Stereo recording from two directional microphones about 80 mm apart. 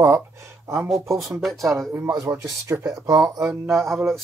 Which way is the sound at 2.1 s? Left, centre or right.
Right.